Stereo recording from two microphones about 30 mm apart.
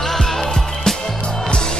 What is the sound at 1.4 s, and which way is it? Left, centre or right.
Music, left.